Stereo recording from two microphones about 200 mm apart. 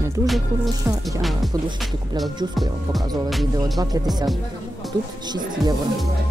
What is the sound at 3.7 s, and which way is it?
Speech, 20° right (ahead or behind).